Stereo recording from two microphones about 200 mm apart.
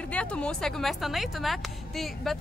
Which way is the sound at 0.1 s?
5° left (ahead or behind).